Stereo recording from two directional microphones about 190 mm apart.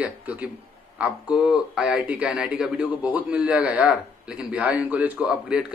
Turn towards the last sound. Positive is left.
turn(degrees=-5)  # may be behind; listen again after turning